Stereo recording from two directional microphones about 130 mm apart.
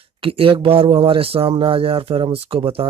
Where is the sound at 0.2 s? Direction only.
45° right (ahead or behind).